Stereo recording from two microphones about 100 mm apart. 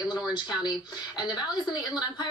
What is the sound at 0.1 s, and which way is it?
A woman's voice, 45° left (ahead or behind).